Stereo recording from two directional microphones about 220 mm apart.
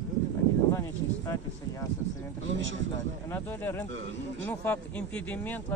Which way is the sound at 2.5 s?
60° right (ahead or behind).